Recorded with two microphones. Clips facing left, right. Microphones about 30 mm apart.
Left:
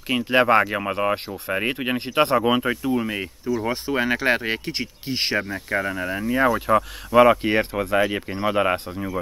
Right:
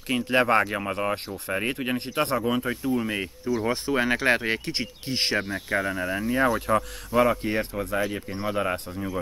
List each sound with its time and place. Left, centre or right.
0.1 s speech: centre; by 3.0 s left
3.6 s speech: centre
7.1 s speech: left